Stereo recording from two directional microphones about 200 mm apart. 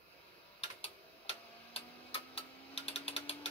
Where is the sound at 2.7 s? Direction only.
30° left (ahead or behind).